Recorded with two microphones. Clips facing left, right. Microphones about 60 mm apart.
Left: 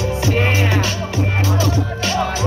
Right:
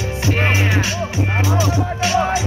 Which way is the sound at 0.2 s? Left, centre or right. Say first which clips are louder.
Right 1 dB; right.